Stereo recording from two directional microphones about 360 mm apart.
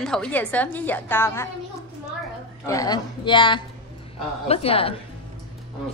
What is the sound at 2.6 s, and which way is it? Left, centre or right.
A woman's voice, centre.